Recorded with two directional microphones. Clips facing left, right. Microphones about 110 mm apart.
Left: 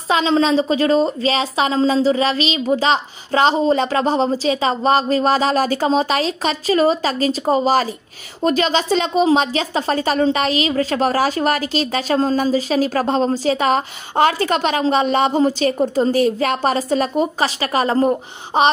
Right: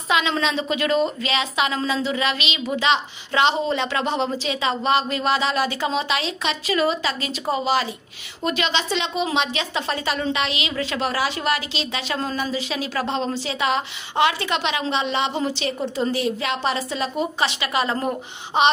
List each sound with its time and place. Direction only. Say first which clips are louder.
0.1 s a woman's voice: left 6 dB; 35° left (ahead or behind)